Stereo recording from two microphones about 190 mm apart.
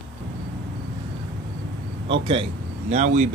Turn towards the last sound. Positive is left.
turn(degrees=-40)  # may be behind; listen again after turning